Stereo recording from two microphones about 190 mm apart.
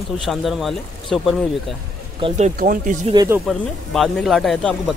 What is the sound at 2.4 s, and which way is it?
Speech, 45° right (ahead or behind).